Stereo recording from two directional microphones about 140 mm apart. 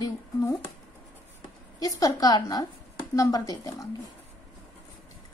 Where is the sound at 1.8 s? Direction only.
25° left (ahead or behind).